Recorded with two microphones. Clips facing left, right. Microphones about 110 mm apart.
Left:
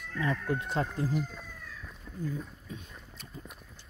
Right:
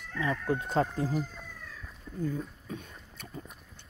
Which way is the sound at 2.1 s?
5° left (ahead or behind).